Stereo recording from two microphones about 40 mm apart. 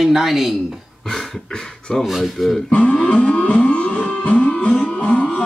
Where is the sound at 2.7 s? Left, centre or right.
Left.